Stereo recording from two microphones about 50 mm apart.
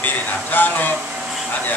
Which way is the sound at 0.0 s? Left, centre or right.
Left.